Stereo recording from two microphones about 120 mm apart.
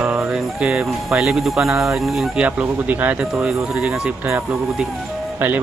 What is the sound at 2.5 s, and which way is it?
Speech, 15° right (ahead or behind).